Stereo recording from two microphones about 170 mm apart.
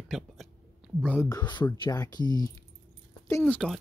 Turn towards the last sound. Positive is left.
turn(degrees=5)  # may be behind; listen again after turning